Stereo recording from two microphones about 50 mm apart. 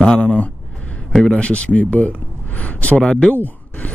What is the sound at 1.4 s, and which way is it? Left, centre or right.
Speech, left.